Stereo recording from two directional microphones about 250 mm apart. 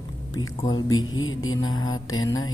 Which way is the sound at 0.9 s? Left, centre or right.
Left.